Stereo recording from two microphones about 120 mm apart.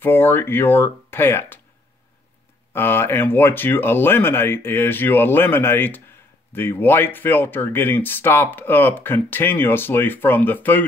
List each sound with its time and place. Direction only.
0.0 s speech: 20° left (ahead or behind)
2.7 s speech: 20° left (ahead or behind)